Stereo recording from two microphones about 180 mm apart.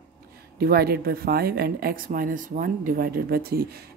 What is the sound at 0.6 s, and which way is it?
Speech, 60° right (ahead or behind).